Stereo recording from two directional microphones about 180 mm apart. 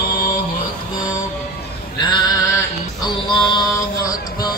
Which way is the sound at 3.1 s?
25° left (ahead or behind).